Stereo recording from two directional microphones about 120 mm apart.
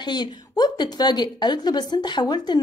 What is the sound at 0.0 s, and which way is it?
A woman's voice, 40° left (ahead or behind).